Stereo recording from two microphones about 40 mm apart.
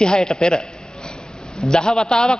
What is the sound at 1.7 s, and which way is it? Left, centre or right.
Speech, centre.